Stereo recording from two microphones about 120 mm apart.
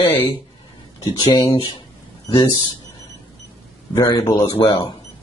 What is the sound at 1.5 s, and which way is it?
A man's voice, 45° left (ahead or behind).